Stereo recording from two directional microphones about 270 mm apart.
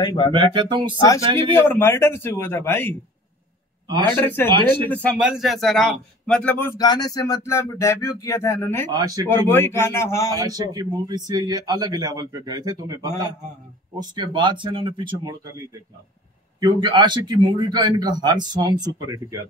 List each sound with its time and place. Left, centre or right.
0.0 s a man's voice: centre
0.3 s speech: centre
0.9 s a man's voice: centre
3.8 s a man's voice: centre
4.1 s a man's voice: centre
4.5 s speech: centre
4.8 s a man's voice: centre
8.9 s speech: centre
9.3 s a man's voice: centre
10.4 s speech: centre
16.5 s speech: centre